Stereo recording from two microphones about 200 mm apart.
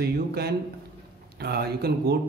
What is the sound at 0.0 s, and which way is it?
Speech, 55° right (ahead or behind).